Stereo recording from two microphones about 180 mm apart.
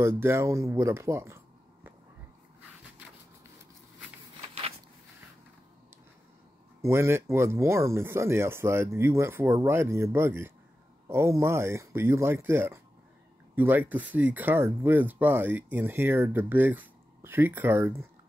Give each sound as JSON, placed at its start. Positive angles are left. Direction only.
{"t": 0.0, "sound": "speech", "side_deg": -15}
{"t": 4.4, "sound": "a sound", "side_deg": -35}
{"t": 6.8, "sound": "speech", "side_deg": -15}